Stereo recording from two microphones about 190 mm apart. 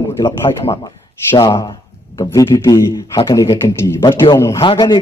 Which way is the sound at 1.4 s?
20° left (ahead or behind).